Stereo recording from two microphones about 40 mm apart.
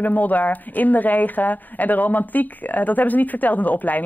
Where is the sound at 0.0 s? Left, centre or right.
Left.